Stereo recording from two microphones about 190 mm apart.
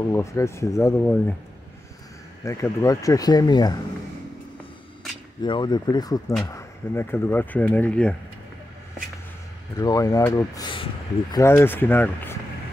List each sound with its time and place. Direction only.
0.0 s speech: 15° left (ahead or behind)
2.4 s speech: 15° left (ahead or behind)
5.4 s speech: 25° left (ahead or behind); by 8.2 s 5° left (ahead or behind)
9.8 s speech: 20° left (ahead or behind)